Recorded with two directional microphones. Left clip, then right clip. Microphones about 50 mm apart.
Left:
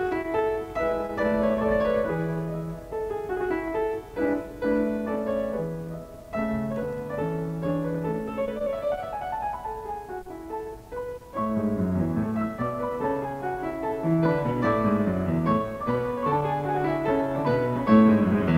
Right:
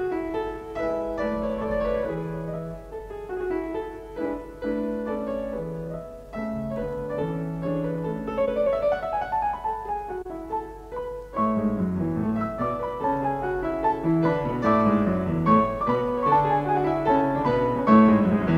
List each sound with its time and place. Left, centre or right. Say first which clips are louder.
0.0 s music: left 2 dB; centre
3.3 s music: right 1 dB; centre; by 8.9 s right
11.3 s music: right 3 dB; right
13.8 s music: right 3 dB; centre
14.2 s music: right 1 dB; right